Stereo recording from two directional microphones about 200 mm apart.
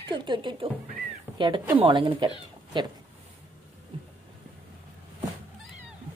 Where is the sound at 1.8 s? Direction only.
25° right (ahead or behind).